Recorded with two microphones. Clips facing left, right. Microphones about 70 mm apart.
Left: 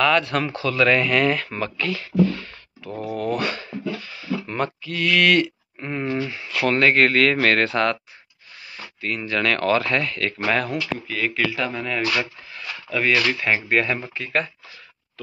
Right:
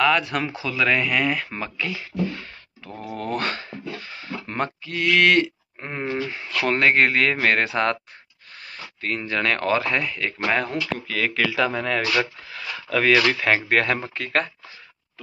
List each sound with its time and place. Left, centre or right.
0.0 s speech: centre
3.2 s a sound: right
6.6 s speech: right
9.0 s speech: right
11.1 s speech: right
12.4 s a sound: right
13.3 s speech: right
14.0 s speech: right